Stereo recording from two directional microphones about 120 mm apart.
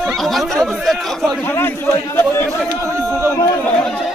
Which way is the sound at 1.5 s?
20° left (ahead or behind).